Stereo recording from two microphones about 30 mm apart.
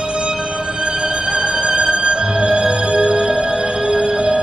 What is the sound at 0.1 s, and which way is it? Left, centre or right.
Music, right.